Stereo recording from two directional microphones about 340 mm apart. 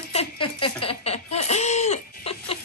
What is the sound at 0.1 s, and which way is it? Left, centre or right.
Chuckle, centre.